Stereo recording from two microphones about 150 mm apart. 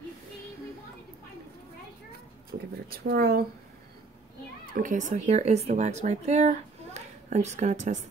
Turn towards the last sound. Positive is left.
turn(degrees=-55)  # may be behind; listen again after turning